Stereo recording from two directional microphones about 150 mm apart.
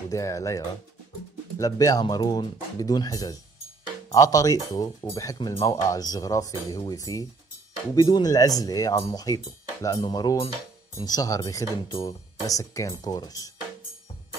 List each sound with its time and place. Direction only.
0.1 s speech: 20° left (ahead or behind)